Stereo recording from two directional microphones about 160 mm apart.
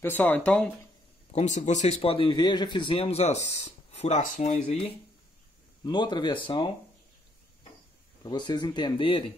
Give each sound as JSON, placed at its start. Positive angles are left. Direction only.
{"t": 0.0, "sound": "speech", "side_deg": 10}
{"t": 1.3, "sound": "speech", "side_deg": 45}
{"t": 5.9, "sound": "speech", "side_deg": 30}
{"t": 8.2, "sound": "speech", "side_deg": 25}